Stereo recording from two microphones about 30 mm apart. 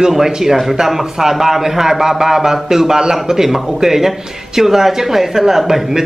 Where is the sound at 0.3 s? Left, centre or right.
Centre.